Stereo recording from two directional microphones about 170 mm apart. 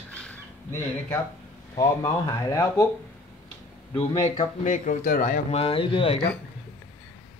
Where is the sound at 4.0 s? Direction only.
40° left (ahead or behind).